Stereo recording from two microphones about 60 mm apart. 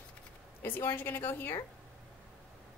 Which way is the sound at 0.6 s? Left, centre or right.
Left.